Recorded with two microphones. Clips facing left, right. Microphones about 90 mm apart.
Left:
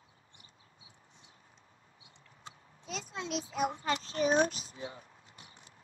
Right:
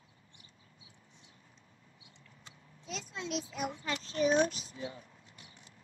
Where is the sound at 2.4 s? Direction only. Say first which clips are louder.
Left 5 dB; 45° left (ahead or behind).